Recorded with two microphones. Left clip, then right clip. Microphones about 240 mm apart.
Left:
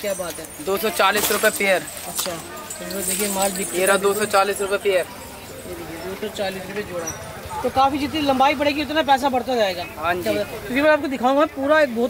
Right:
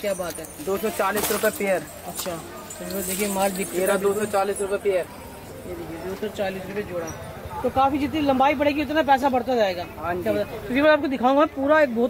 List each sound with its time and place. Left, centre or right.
0.2 s speech: right
0.8 s speech: centre
6.3 s speech: centre